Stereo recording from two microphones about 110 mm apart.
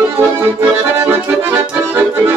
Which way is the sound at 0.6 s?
20° right (ahead or behind).